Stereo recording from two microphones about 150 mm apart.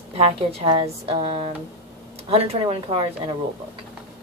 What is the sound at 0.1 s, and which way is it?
A woman's voice, 40° right (ahead or behind).